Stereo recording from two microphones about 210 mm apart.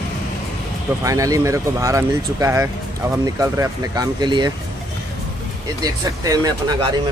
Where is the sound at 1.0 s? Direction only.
15° right (ahead or behind).